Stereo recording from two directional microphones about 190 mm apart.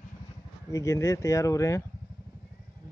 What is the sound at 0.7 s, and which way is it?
Speech, 15° left (ahead or behind).